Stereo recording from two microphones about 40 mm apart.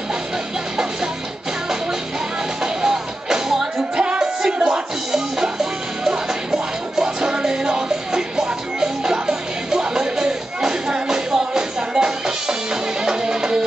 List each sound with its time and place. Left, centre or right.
2.6 s music: centre
3.9 s music: right